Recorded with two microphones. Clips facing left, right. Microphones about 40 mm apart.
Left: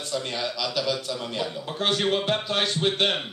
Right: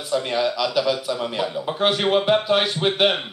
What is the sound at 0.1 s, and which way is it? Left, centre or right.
A man's voice, centre.